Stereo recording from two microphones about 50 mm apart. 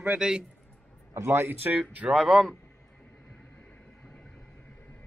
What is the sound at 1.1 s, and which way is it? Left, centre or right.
Speech, right.